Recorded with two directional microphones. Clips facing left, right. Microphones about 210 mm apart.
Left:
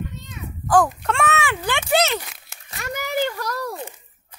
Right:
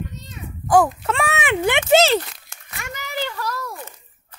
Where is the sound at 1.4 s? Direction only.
20° right (ahead or behind).